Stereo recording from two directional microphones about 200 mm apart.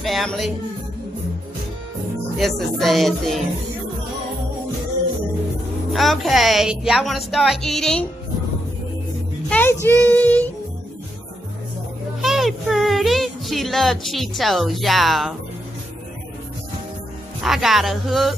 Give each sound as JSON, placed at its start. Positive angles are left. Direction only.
{"t": 0.0, "sound": "music", "side_deg": 0}
{"t": 2.3, "sound": "a woman's voice", "side_deg": 0}
{"t": 5.9, "sound": "a woman's voice", "side_deg": 0}
{"t": 9.5, "sound": "a child's voice", "side_deg": 10}
{"t": 12.2, "sound": "speech", "side_deg": 0}
{"t": 17.4, "sound": "a woman's voice", "side_deg": 0}